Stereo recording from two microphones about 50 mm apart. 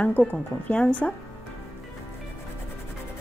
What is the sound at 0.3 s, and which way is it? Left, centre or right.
Speech, left.